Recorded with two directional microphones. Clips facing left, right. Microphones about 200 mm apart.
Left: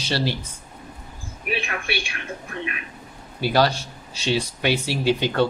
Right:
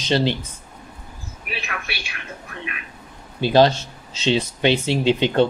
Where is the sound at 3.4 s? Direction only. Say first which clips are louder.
Right 5 dB; 20° right (ahead or behind).